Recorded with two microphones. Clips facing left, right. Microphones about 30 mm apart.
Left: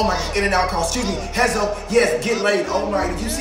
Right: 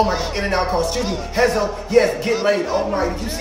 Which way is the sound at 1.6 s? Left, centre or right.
Left.